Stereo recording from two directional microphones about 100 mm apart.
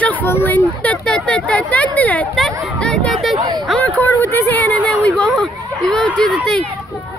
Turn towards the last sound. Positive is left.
turn(degrees=5)  # may be behind; listen again after turning